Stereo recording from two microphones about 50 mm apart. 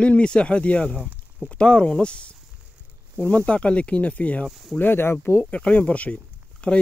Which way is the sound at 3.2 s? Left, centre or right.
Left.